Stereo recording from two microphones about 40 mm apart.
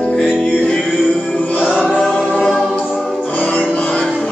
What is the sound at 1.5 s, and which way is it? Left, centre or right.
Choir, left.